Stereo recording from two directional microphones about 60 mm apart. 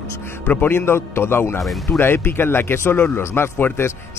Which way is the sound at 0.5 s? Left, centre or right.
Left.